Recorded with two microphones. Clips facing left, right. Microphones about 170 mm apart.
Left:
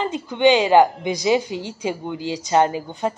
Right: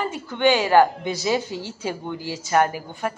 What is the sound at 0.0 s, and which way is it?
A woman's voice, 20° left (ahead or behind).